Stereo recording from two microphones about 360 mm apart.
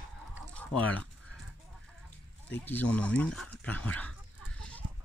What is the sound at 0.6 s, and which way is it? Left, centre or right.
Speech, centre.